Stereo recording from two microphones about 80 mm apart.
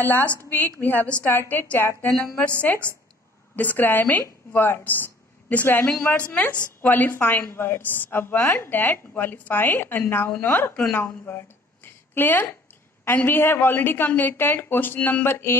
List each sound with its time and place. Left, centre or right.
0.0 s a woman's voice: left
11.0 s a sound: left
13.0 s a woman's voice: left
15.2 s mantra: left